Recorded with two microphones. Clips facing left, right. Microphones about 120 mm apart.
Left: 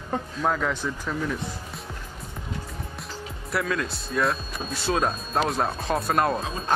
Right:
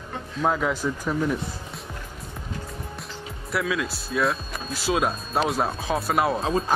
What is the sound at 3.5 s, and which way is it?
Speech, 5° right (ahead or behind).